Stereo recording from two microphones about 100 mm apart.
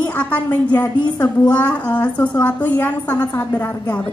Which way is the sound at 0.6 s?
40° left (ahead or behind).